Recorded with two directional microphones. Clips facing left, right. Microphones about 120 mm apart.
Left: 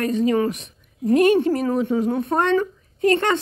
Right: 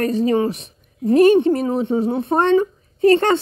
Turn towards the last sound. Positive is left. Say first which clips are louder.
# right 5 dB
turn(degrees=-30)  # may be behind; listen again after turning